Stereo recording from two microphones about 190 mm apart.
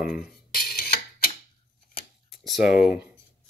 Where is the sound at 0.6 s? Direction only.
55° left (ahead or behind).